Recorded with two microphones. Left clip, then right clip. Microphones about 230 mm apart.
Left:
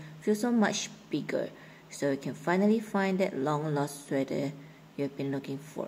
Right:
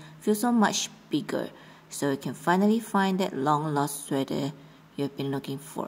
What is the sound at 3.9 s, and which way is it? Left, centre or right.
A woman's voice, right.